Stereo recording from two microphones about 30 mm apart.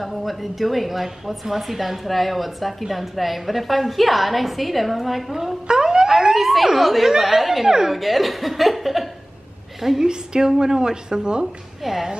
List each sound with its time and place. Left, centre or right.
0.0 s a woman's voice: centre
5.7 s police car: right
6.1 s a woman's voice: centre
10.0 s speech: right
11.8 s speech: centre